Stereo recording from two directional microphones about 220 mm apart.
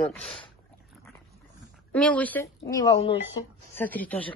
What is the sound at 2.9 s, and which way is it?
Speech, 25° left (ahead or behind).